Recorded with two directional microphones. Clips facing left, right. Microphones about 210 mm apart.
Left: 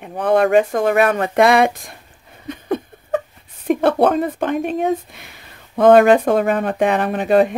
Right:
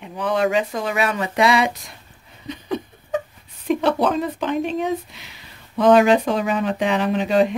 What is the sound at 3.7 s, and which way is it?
Speech, 55° left (ahead or behind).